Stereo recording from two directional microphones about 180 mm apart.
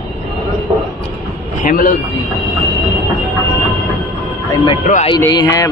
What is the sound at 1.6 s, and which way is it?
Speech, 50° left (ahead or behind).